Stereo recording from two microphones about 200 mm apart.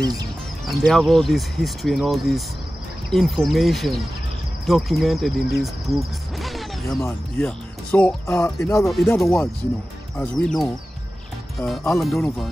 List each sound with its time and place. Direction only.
0.0 s speech: 20° right (ahead or behind)
0.7 s speech: centre (ahead or behind)
8.8 s speech: centre (ahead or behind)
10.1 s speech: 5° left (ahead or behind)